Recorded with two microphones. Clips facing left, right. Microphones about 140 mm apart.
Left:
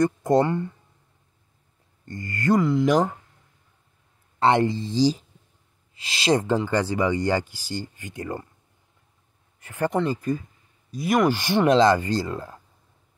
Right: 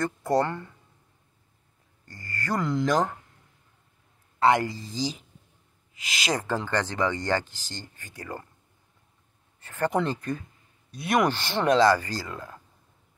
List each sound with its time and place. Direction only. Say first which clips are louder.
0.0 s speech: left 5 dB; 20° left (ahead or behind)
2.0 s speech: left 9 dB; 20° left (ahead or behind)
2.6 s speech: left 4 dB; 5° left (ahead or behind)
4.4 s speech: left 2 dB; 25° left (ahead or behind)
6.5 s speech: left 5 dB; 10° left (ahead or behind)
9.6 s a sound: left 2 dB; 15° left (ahead or behind)
9.8 s speech: left 3 dB; centre (ahead or behind)
11.3 s speech: left 4 dB; 15° left (ahead or behind); by 12.5 s 30° left (ahead or behind)